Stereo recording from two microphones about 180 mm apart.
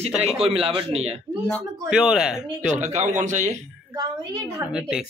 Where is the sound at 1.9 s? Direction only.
5° right (ahead or behind).